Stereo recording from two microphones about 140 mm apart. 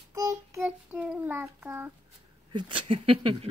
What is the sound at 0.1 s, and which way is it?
Child singing, 25° right (ahead or behind).